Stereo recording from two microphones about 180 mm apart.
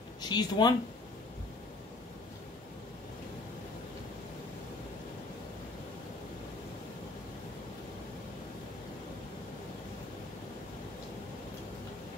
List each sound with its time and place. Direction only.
0.2 s speech: 25° left (ahead or behind)